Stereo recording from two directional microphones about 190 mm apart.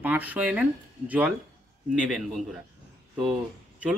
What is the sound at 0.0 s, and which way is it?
A man's voice, 10° right (ahead or behind).